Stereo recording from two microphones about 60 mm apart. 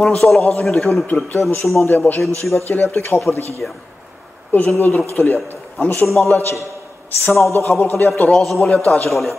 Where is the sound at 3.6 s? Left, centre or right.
Centre.